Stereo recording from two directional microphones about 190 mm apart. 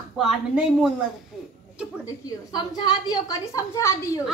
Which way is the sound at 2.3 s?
20° left (ahead or behind).